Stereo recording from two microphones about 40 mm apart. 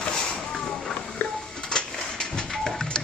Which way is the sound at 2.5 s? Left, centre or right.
Centre.